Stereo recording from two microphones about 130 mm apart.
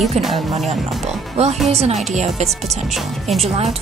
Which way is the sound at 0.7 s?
55° right (ahead or behind).